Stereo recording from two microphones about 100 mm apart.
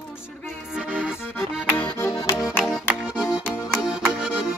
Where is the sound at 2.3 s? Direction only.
5° right (ahead or behind).